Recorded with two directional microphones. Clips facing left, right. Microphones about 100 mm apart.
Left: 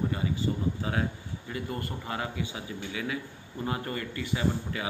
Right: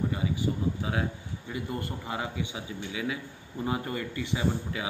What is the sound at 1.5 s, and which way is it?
Speech, 15° right (ahead or behind).